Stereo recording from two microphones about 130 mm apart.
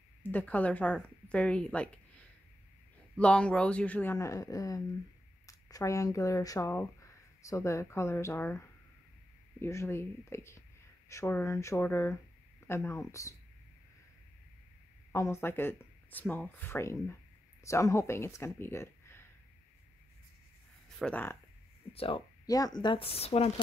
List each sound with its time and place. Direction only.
0.2 s speech: 15° left (ahead or behind)
3.2 s speech: 10° left (ahead or behind); by 13.4 s 25° left (ahead or behind)
15.1 s speech: 20° left (ahead or behind)
21.0 s speech: 15° left (ahead or behind)
21.9 s speech: 45° left (ahead or behind)
22.5 s speech: 30° left (ahead or behind); by 23.5 s 50° left (ahead or behind)